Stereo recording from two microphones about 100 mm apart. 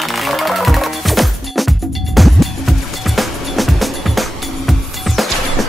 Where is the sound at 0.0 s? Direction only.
Centre (ahead or behind).